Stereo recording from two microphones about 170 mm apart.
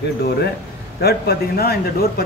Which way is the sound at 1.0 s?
65° left (ahead or behind).